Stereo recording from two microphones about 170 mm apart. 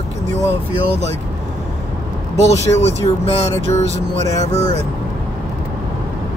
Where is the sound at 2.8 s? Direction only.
35° left (ahead or behind).